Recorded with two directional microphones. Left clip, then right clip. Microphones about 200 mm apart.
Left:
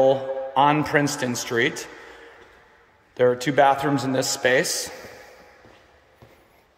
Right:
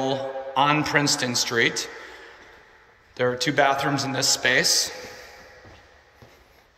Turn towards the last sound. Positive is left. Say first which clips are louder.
# even
turn(degrees=20)  # may be behind; listen again after turning